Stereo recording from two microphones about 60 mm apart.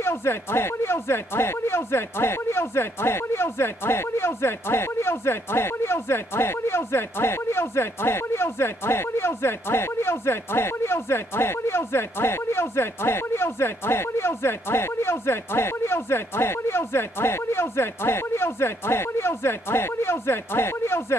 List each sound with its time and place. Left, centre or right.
0.0 s speech: left